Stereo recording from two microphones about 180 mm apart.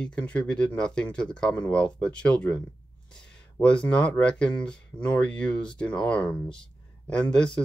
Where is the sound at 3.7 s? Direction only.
5° left (ahead or behind).